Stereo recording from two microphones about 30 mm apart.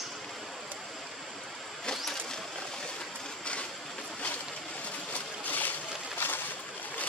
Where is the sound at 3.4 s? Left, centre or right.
Left.